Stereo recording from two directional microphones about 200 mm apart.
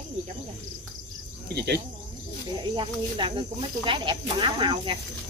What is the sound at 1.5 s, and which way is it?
Speech, 55° right (ahead or behind).